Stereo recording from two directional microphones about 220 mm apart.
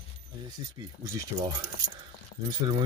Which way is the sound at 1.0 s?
15° right (ahead or behind).